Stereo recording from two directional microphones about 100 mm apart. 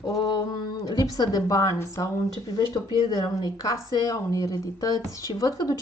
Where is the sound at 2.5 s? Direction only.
45° left (ahead or behind).